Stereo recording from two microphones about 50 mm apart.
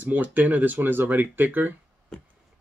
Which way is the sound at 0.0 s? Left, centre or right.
Right.